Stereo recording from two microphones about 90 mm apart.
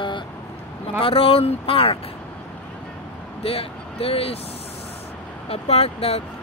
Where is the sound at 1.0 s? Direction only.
90° left.